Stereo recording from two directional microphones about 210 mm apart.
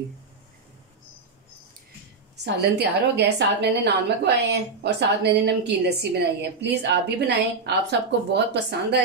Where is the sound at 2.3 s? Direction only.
55° right (ahead or behind).